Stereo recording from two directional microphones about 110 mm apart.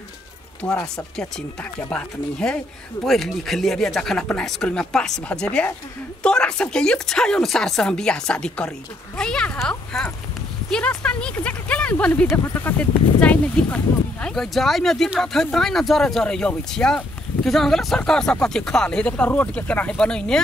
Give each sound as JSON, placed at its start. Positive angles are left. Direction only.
{"t": 0.6, "sound": "speech", "side_deg": 30}
{"t": 0.9, "sound": "speech", "side_deg": 10}